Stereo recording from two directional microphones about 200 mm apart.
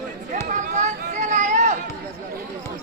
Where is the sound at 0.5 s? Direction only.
35° right (ahead or behind).